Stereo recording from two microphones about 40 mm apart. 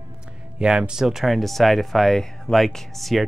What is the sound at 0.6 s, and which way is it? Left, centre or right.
Speech, centre.